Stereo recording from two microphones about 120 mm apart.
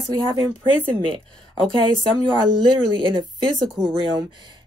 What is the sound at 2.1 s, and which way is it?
Speech, 40° right (ahead or behind).